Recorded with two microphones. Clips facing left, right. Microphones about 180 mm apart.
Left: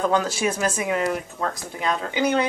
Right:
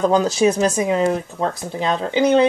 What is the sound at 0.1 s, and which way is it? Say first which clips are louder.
Speech: right 7 dB; 30° right (ahead or behind).